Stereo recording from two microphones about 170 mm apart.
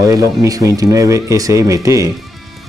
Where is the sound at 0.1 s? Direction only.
20° right (ahead or behind).